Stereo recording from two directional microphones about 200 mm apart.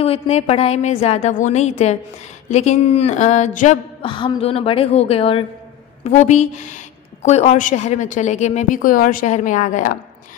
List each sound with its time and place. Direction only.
0.0 s a woman's voice: 30° left (ahead or behind)
4.1 s a woman's voice: 25° left (ahead or behind); by 9.9 s 40° left (ahead or behind)